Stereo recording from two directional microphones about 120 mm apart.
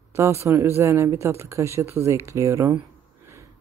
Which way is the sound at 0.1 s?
25° right (ahead or behind).